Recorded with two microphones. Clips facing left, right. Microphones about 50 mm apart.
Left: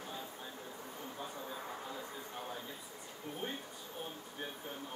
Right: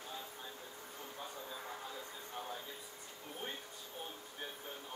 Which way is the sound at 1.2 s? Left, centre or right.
Centre.